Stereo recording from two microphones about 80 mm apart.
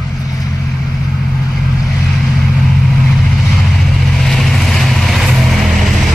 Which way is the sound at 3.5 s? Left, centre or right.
Centre.